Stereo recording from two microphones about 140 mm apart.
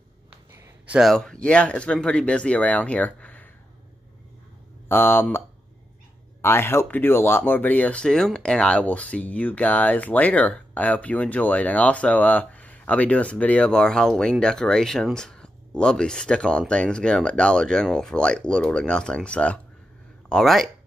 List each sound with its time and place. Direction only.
0.8 s speech: 5° right (ahead or behind)
4.8 s speech: 15° left (ahead or behind)
6.4 s speech: 15° left (ahead or behind); by 20.7 s centre (ahead or behind)